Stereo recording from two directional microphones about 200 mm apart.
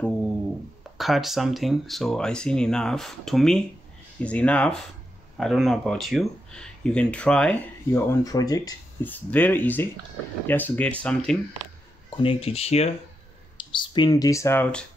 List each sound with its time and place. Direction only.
0.9 s speech: centre (ahead or behind)
12.2 s speech: 30° left (ahead or behind); by 14.9 s 5° left (ahead or behind)